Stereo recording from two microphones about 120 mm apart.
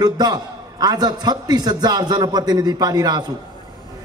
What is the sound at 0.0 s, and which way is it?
A man's voice, 35° right (ahead or behind).